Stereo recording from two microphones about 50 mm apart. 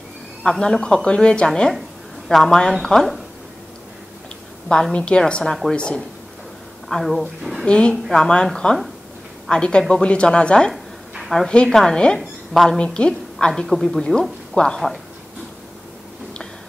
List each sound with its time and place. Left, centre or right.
0.4 s speech: centre
1.5 s speech: centre
4.9 s speech: left
5.4 s speech: centre
5.8 s speech: centre
6.9 s speech: centre
7.6 s speech: centre
9.5 s speech: centre
10.7 s a sound: centre
11.4 s a woman's voice: centre
13.7 s speech: centre